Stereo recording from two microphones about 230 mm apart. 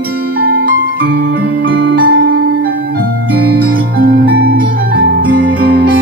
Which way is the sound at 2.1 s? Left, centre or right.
Right.